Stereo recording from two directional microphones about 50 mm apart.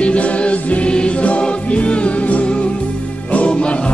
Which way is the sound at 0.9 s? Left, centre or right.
Left.